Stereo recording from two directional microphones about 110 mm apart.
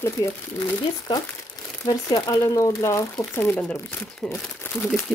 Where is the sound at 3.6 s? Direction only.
10° left (ahead or behind).